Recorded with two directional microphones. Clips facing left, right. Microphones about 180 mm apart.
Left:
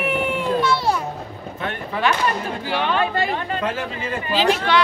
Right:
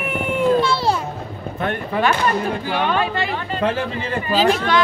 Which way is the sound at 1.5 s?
50° right (ahead or behind).